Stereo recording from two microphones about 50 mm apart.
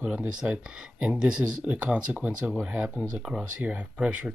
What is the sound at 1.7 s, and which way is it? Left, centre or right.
Speech, right.